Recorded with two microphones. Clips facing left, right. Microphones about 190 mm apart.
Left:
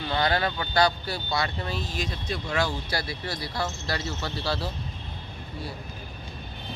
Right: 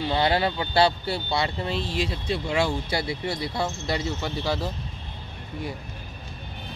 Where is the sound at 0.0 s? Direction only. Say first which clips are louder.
Right 3 dB; 25° right (ahead or behind).